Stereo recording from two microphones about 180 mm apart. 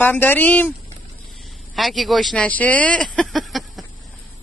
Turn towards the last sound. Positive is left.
turn(degrees=0)  # may be behind; listen again after turning